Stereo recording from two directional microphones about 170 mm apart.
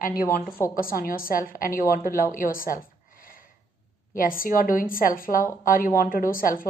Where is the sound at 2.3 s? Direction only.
55° left (ahead or behind).